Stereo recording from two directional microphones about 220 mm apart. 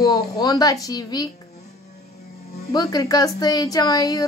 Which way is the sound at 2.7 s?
15° left (ahead or behind).